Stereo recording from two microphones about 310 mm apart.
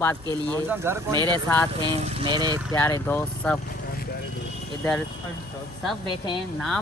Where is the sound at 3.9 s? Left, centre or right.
Left.